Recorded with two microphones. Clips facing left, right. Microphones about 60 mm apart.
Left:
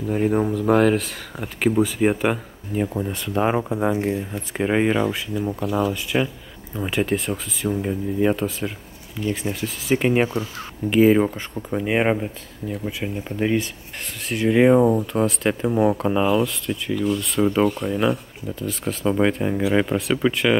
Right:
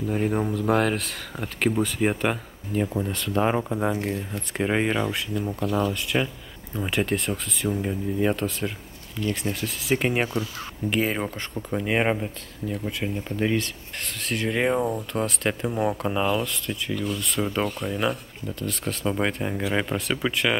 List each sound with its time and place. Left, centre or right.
0.1 s speech: centre
3.9 s speech: centre
4.6 s speech: centre